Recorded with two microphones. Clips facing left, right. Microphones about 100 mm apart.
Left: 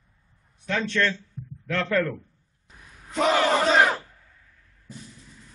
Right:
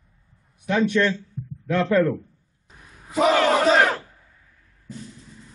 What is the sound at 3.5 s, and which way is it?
Crowd, centre (ahead or behind).